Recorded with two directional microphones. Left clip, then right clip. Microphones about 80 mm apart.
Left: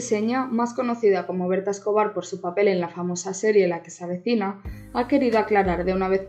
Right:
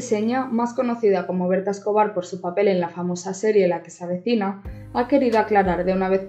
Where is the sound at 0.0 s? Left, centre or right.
Left.